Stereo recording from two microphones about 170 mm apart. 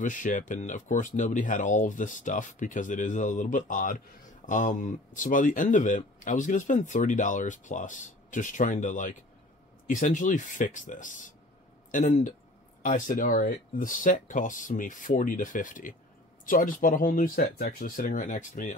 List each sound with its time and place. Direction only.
0.0 s speech: 50° left (ahead or behind)